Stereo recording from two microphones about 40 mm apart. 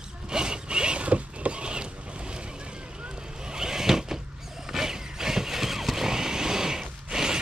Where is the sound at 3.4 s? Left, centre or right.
Centre.